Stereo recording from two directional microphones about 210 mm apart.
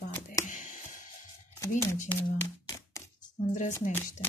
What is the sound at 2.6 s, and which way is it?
Music, 15° left (ahead or behind).